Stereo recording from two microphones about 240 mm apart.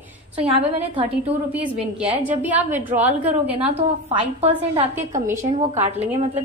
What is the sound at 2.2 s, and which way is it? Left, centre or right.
A woman's voice, centre.